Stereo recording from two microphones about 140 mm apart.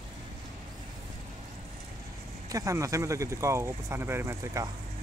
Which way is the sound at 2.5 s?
25° right (ahead or behind).